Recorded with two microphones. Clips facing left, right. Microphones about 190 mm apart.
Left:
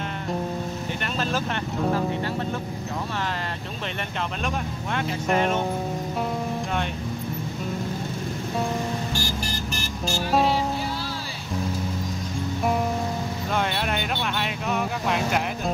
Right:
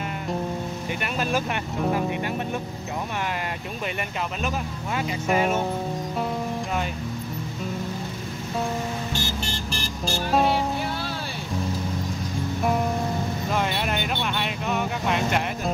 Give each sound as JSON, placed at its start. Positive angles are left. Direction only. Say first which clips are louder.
{"t": 1.1, "sound": "speech", "louder": "right 2 dB", "side_deg": -10}
{"t": 4.9, "sound": "speech", "louder": "even", "side_deg": -5}
{"t": 9.1, "sound": "vehicle", "louder": "even", "side_deg": -25}
{"t": 13.5, "sound": "vehicle", "louder": "left 1 dB", "side_deg": 0}